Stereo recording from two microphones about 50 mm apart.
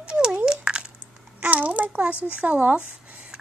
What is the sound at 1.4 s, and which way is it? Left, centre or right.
Speech, right.